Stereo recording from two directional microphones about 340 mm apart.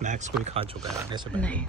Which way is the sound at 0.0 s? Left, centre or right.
Right.